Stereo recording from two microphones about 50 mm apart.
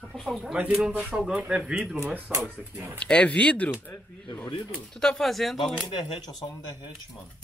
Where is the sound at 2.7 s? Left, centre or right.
Right.